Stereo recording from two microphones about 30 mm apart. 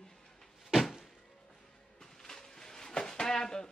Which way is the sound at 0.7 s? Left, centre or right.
Centre.